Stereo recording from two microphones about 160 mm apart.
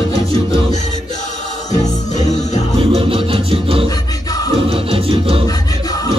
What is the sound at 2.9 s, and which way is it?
Music, 35° right (ahead or behind).